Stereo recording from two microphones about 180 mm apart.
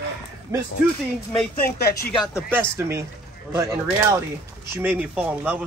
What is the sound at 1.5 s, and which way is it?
Speech, 55° left (ahead or behind).